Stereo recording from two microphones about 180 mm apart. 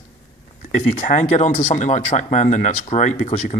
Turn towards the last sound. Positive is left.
turn(degrees=40)  # may be behind; listen again after turning